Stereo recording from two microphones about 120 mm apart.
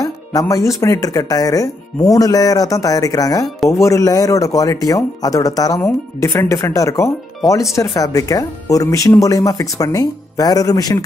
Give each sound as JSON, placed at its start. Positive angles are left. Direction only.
{"t": 0.0, "sound": "speech", "side_deg": 30}